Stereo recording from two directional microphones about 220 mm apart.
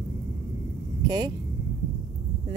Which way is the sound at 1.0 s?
20° right (ahead or behind).